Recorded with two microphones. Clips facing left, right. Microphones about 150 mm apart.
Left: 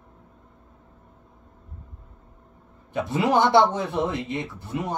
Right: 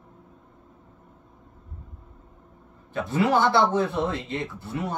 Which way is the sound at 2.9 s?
15° left (ahead or behind).